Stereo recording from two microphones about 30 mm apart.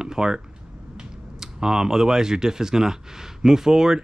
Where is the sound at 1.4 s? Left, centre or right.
Centre.